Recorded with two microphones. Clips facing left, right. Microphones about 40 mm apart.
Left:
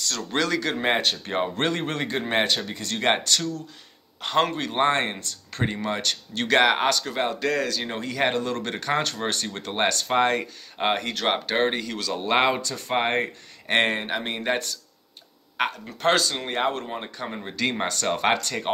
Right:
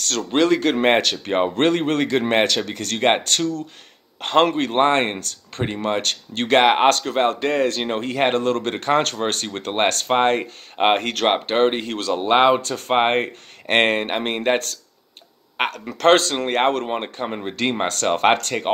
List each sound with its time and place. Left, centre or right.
0.0 s speech: right
0.3 s speech: right
0.7 s speech: right
2.0 s speech: right
3.0 s speech: right
6.9 s speech: right
10.0 s speech: right
11.0 s speech: right
11.2 s speech: right
12.2 s speech: right
12.6 s speech: right
12.9 s speech: right
15.8 s speech: right
17.0 s speech: right